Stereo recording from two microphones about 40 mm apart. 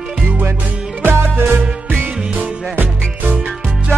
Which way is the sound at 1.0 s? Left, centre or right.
Right.